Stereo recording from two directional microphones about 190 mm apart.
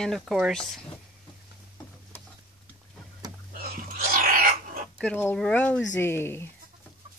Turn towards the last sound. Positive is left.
turn(degrees=10)  # may be behind; listen again after turning